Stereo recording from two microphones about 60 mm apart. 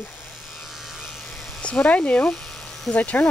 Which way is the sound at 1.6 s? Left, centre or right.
Centre.